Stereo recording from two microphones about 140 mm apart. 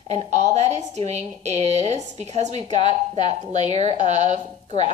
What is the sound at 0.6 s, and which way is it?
Speech, 55° right (ahead or behind).